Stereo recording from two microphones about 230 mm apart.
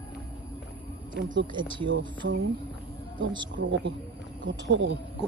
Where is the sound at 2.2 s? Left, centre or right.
Right.